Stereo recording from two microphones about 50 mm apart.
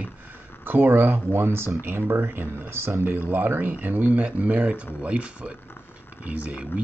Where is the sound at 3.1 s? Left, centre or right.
Right.